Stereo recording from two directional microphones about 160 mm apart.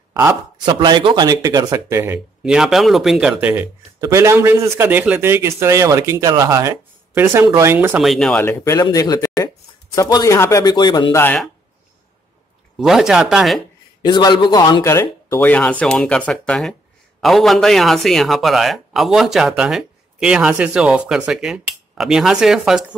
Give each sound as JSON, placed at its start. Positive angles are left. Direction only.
{"t": 0.1, "sound": "speech", "side_deg": -15}
{"t": 0.7, "sound": "speech", "side_deg": -30}
{"t": 8.0, "sound": "a man's voice", "side_deg": 0}
{"t": 8.5, "sound": "speech", "side_deg": 15}
{"t": 11.1, "sound": "speech", "side_deg": 10}
{"t": 12.7, "sound": "a man's voice", "side_deg": 0}
{"t": 14.0, "sound": "a man's voice", "side_deg": 25}